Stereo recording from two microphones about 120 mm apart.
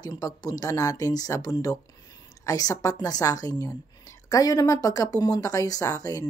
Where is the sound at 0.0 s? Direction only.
30° left (ahead or behind).